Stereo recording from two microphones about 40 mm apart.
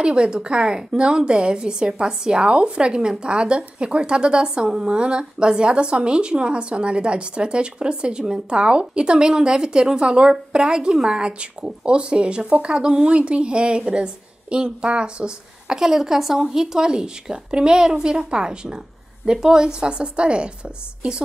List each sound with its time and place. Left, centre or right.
0.0 s a woman's voice: right